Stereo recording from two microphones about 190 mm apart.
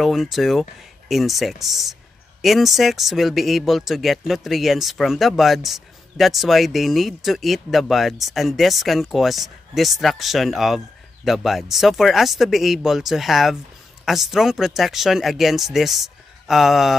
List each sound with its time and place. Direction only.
0.0 s speech: centre (ahead or behind)